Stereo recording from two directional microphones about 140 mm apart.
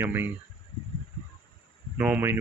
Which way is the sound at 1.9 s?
15° right (ahead or behind).